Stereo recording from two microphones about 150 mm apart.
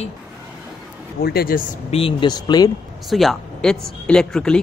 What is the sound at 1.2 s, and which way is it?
Speech, 85° left.